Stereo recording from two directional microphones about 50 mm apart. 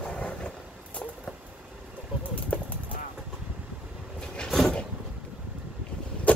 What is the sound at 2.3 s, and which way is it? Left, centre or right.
Horse, left.